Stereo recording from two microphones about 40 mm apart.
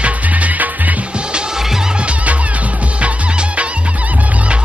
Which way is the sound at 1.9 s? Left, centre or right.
Right.